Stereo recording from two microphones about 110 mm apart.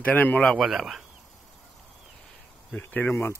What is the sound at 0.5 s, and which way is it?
Speech, 5° right (ahead or behind).